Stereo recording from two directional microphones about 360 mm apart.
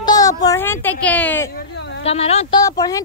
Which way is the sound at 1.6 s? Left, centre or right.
Left.